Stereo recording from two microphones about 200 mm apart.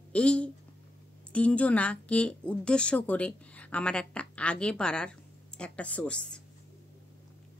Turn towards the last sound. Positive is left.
turn(degrees=5)  # may be behind; listen again after turning